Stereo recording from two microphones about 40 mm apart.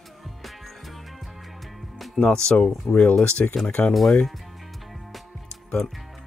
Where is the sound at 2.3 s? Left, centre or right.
Centre.